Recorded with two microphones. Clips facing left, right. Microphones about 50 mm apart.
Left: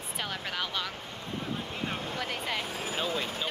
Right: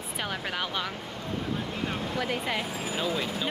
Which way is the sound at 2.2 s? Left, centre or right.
Centre.